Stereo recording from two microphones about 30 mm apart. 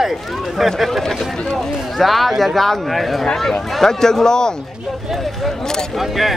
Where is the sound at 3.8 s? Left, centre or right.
Centre.